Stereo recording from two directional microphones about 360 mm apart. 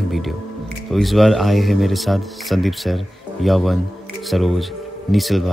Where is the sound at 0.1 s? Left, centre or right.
Centre.